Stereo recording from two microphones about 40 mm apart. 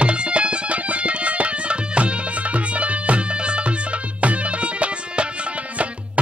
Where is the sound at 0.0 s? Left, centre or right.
Right.